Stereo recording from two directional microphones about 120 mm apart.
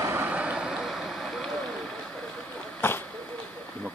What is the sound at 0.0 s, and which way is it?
Vehicle, 20° right (ahead or behind).